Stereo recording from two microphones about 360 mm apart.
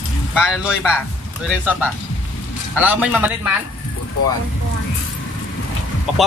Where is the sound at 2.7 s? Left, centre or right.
Centre.